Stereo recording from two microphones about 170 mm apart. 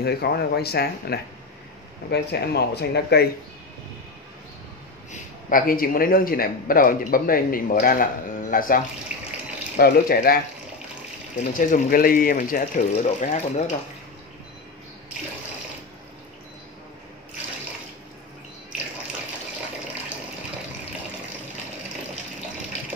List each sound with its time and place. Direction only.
0.0 s speech: 70° left (ahead or behind)
5.1 s a man's voice: 55° left (ahead or behind)
9.1 s water tap: 5° right (ahead or behind)
9.8 s a man's voice: 65° left (ahead or behind)
11.5 s speech: 55° left (ahead or behind)